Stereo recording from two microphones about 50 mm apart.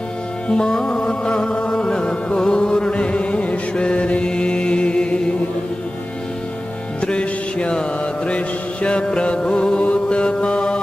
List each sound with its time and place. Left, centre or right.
0.5 s music: centre
7.0 s mantra: centre